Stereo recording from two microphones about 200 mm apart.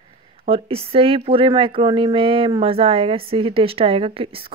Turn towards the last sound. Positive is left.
turn(degrees=-30)  # may be behind; listen again after turning